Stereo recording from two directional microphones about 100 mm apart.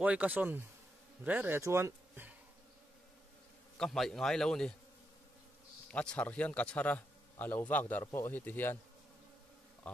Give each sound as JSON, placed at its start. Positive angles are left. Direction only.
{"t": 0.0, "sound": "speech", "side_deg": -15}
{"t": 1.6, "sound": "speech", "side_deg": -30}
{"t": 3.7, "sound": "speech", "side_deg": 5}
{"t": 5.9, "sound": "speech", "side_deg": 10}